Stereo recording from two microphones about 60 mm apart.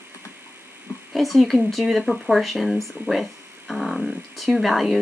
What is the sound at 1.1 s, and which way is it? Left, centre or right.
Speech, centre.